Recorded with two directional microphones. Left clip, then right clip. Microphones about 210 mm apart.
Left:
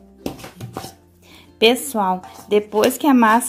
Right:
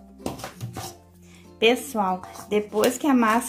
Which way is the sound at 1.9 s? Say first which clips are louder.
Left 5 dB; 40° left (ahead or behind).